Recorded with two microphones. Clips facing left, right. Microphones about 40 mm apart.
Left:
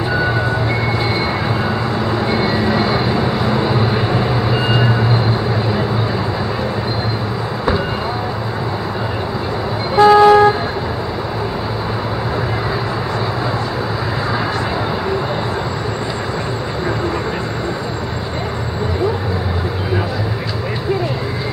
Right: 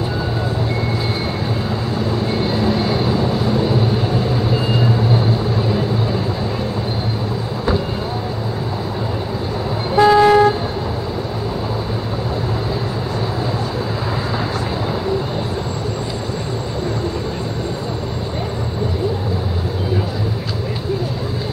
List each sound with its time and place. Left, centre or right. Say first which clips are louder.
2.3 s vehicle: left 3 dB; left
2.6 s vehicle: left 2 dB; left
10.0 s vehicle: left 3 dB; centre